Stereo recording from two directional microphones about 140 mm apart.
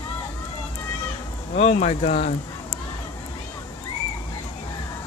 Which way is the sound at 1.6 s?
50° left (ahead or behind).